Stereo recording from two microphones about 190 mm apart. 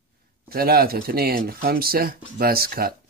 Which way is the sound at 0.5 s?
55° right (ahead or behind).